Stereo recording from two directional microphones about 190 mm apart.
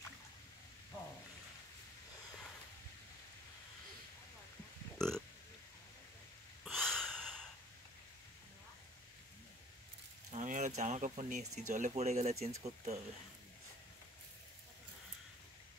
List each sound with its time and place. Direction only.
4.9 s burping: 5° left (ahead or behind)
6.6 s gasp: centre (ahead or behind)
10.3 s speech: 40° right (ahead or behind)